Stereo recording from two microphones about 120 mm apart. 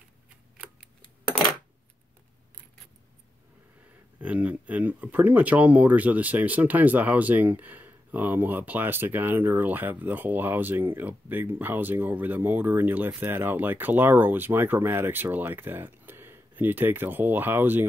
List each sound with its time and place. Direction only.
4.2 s speech: 10° right (ahead or behind)